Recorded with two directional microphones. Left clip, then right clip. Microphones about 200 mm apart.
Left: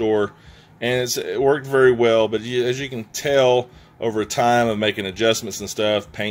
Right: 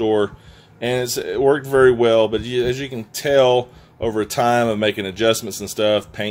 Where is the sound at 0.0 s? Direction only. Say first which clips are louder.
Right 1 dB; 5° right (ahead or behind).